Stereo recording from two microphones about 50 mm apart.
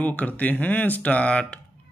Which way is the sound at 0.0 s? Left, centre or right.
Left.